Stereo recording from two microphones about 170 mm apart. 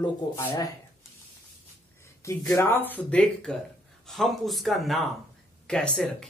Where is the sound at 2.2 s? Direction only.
15° left (ahead or behind).